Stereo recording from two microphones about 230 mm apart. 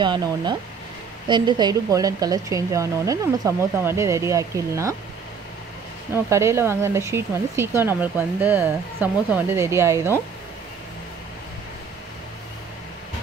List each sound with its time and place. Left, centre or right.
0.0 s speech: centre
6.1 s speech: centre